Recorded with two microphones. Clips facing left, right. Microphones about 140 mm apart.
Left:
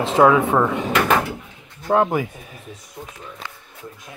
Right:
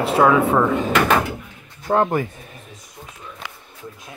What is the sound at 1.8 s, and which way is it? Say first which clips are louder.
Speech: even; 5° left (ahead or behind).